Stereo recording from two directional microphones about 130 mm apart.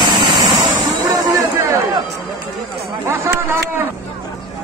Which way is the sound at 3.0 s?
20° right (ahead or behind).